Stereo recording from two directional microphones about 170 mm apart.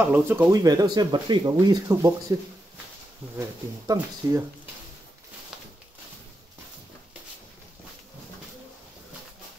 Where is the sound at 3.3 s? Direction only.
20° right (ahead or behind).